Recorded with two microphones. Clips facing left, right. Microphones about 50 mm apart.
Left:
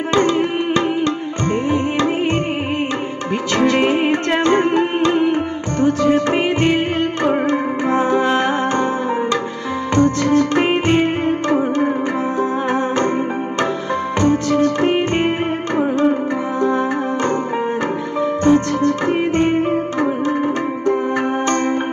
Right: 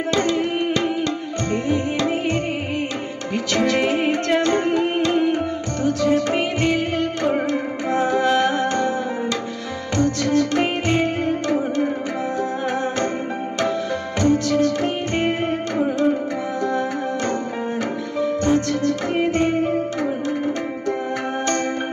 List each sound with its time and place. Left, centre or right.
0.1 s music: left
3.5 s music: left
9.9 s music: left
14.2 s music: left
18.2 s music: left